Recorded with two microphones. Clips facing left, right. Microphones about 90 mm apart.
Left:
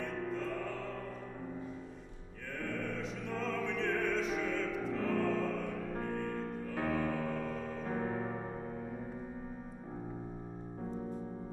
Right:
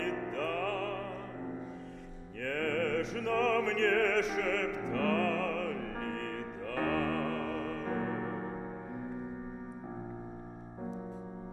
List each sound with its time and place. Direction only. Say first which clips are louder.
0.0 s music: right 3 dB; 90° right
2.4 s opera: right 7 dB; 90° right
6.3 s music: right 1 dB; 5° left (ahead or behind)
7.2 s music: right 3 dB; 90° right
7.4 s music: right 3 dB; centre (ahead or behind)